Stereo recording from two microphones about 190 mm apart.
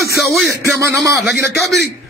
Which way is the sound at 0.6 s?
15° right (ahead or behind).